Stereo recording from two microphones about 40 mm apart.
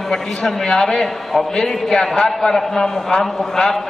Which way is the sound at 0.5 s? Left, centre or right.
Centre.